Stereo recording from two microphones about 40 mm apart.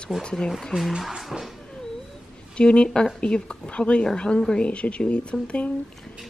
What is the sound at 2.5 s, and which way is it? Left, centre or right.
Speech, left.